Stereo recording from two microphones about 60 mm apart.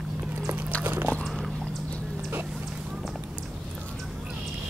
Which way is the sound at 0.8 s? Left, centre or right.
Right.